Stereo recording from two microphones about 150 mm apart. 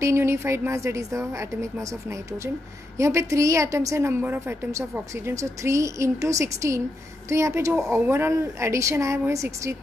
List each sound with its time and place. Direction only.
0.0 s a woman's voice: 20° right (ahead or behind)